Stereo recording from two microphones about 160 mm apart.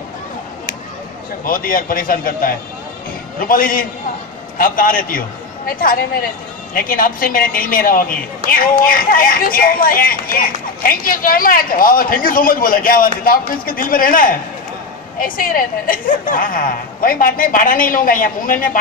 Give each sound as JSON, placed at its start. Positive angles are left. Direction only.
{"t": 1.4, "sound": "a woman's voice", "side_deg": 60}